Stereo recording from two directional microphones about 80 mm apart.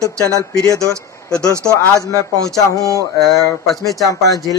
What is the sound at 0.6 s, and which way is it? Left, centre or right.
Speech, left.